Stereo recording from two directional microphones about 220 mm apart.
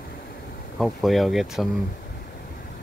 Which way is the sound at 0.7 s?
Centre (ahead or behind).